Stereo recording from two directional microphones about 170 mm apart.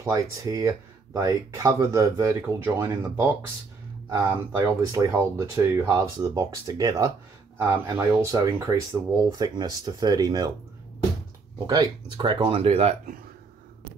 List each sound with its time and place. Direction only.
0.0 s speech: 20° right (ahead or behind)
11.6 s speech: 25° right (ahead or behind)